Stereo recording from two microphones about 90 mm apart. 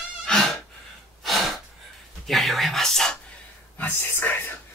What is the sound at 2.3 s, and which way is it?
Whispering, centre (ahead or behind).